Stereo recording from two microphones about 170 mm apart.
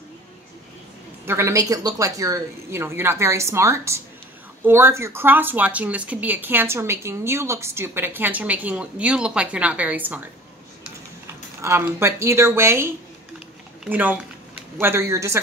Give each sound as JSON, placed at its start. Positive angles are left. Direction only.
{"t": 1.2, "sound": "speech", "side_deg": -15}
{"t": 11.6, "sound": "speech", "side_deg": -15}